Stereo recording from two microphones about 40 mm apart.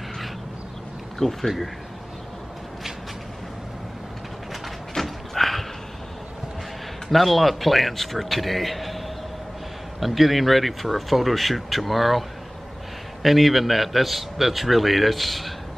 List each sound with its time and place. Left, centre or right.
1.2 s speech: centre
4.9 s a sound: centre
7.1 s speech: centre